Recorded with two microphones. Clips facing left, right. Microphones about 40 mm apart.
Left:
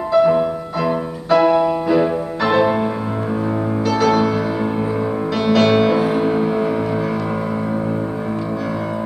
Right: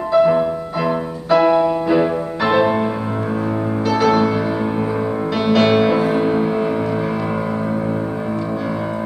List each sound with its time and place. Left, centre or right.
0.1 s music: centre
3.9 s music: centre
5.5 s music: centre